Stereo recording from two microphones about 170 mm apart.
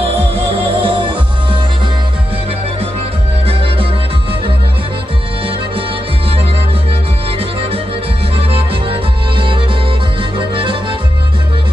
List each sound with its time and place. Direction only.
0.0 s music: 35° right (ahead or behind)
3.4 s music: 30° right (ahead or behind)
7.2 s music: 35° right (ahead or behind)